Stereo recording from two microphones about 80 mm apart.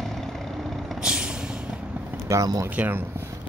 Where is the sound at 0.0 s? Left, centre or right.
Centre.